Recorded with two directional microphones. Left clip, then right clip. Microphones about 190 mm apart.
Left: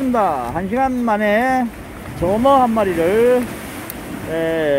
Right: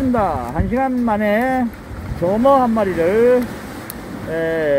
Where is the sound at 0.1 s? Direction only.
5° left (ahead or behind).